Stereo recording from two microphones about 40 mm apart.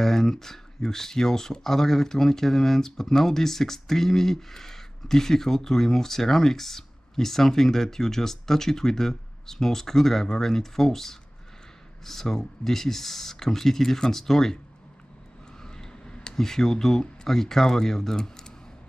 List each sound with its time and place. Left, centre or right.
0.0 s speech: centre
15.6 s a sound: centre
16.3 s speech: centre